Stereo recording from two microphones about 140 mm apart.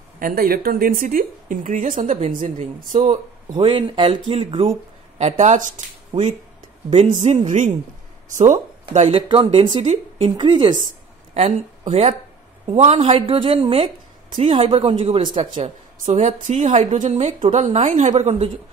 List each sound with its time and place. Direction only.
0.2 s a woman's voice: 90° right; by 3.2 s 60° right (ahead or behind)
3.5 s a woman's voice: 35° right (ahead or behind)
5.3 s a woman's voice: 60° right (ahead or behind)
9.1 s a woman's voice: 40° right (ahead or behind)
11.3 s a woman's voice: 50° right (ahead or behind)
15.5 s a woman's voice: 60° right (ahead or behind)